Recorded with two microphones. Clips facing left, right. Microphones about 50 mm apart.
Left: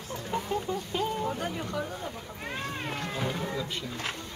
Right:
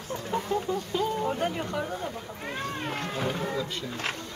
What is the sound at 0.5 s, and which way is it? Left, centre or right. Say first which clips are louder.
Chicken: right 3 dB; centre.